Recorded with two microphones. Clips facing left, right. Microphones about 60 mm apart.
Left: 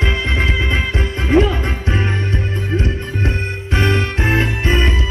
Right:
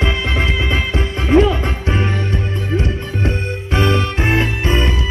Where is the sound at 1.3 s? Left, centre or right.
Left.